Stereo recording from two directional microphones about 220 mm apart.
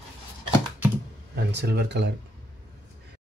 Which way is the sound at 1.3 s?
50° right (ahead or behind).